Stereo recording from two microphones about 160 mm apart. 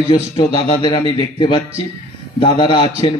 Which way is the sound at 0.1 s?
35° left (ahead or behind).